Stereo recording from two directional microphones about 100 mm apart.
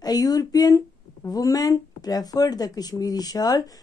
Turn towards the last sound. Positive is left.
turn(degrees=40)  # may be behind; listen again after turning